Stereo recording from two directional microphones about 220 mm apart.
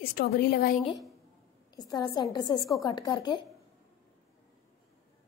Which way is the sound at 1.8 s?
20° left (ahead or behind).